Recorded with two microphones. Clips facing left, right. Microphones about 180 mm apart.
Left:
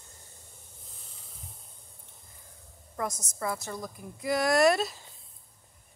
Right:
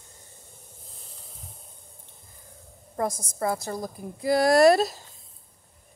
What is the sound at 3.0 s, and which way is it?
A woman's voice, 30° right (ahead or behind).